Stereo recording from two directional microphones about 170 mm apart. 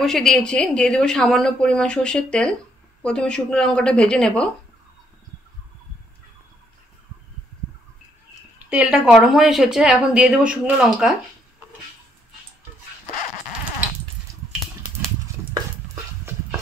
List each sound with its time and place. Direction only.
0.0 s a woman's voice: 5° left (ahead or behind)
8.6 s a woman's voice: 5° right (ahead or behind)
15.5 s dog: 20° right (ahead or behind)